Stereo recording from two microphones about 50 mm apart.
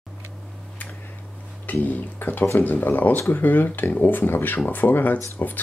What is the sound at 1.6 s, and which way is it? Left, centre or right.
Speech, left.